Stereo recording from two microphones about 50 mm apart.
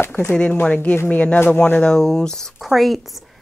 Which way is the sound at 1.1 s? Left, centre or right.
Left.